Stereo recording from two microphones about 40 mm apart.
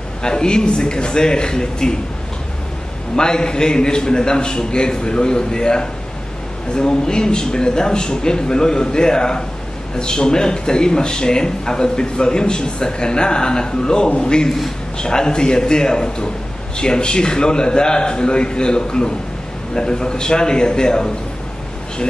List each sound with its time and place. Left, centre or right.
0.2 s speech: centre
3.2 s speech: centre